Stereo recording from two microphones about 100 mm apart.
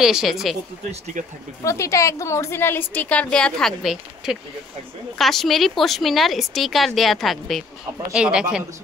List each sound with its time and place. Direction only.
0.0 s speech: 5° right (ahead or behind)
1.6 s a woman's voice: 30° left (ahead or behind); by 8.6 s 10° right (ahead or behind)